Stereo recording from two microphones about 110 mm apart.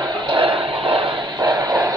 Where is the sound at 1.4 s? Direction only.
35° right (ahead or behind).